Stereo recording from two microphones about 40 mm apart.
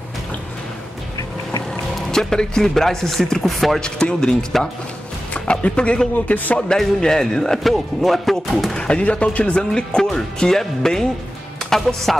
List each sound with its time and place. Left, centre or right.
2.0 s speech: centre
3.4 s music: centre
3.8 s speech: centre
5.5 s speech: left
6.2 s speech: left
7.0 s speech: centre
7.6 s music: centre
8.7 s speech: left
9.8 s speech: centre